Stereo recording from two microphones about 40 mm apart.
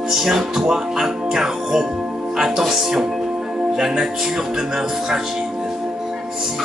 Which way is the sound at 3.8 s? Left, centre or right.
Centre.